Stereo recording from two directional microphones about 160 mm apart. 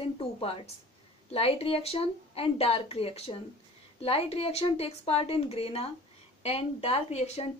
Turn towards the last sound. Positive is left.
turn(degrees=40)  # may be behind; listen again after turning